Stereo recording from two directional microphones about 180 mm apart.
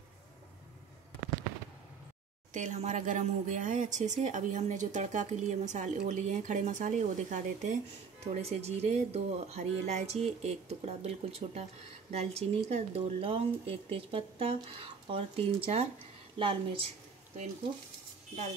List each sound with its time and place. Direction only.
2.5 s a woman's voice: 40° right (ahead or behind)